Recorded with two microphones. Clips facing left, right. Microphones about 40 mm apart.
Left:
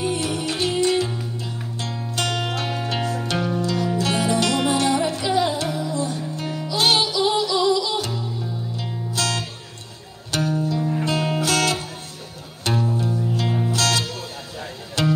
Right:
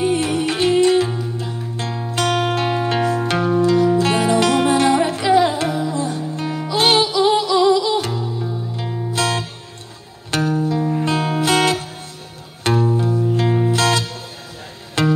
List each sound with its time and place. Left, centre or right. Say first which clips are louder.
0.0 s music: right 6 dB; right
2.2 s music: right 8 dB; right
9.1 s music: right 4 dB; right
15.0 s music: right 4 dB; right